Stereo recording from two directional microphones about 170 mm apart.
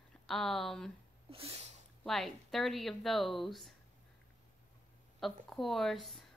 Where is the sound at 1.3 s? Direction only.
35° right (ahead or behind).